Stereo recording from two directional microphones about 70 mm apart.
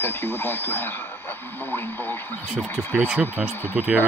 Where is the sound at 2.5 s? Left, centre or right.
Centre.